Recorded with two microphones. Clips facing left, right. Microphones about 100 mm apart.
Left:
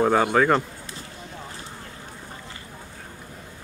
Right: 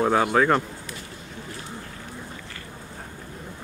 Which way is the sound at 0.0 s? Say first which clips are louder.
Left 1 dB; 5° right (ahead or behind).